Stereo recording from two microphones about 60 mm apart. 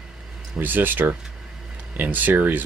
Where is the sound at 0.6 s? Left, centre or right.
Right.